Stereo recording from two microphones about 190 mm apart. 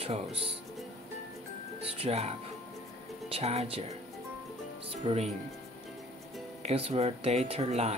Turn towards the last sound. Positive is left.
turn(degrees=-35)  # may be behind; listen again after turning